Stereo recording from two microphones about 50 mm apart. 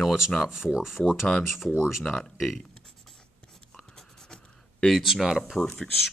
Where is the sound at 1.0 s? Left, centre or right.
Centre.